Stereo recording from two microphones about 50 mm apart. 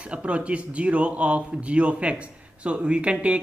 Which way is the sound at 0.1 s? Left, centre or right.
Right.